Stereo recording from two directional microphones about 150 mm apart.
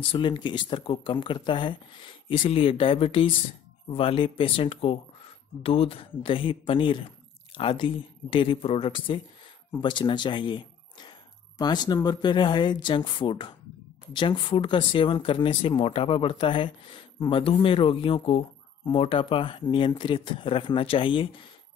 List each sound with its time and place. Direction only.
0.1 s speech: 35° left (ahead or behind)